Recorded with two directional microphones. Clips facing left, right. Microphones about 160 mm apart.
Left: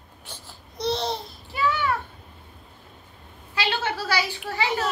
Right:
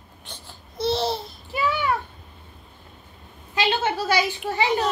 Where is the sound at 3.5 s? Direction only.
20° right (ahead or behind).